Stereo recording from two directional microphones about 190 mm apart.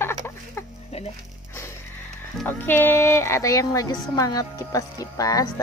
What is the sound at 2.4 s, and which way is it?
Speech, 10° left (ahead or behind).